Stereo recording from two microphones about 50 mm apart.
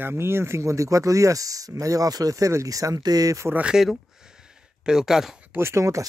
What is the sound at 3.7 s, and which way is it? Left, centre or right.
Speech, centre.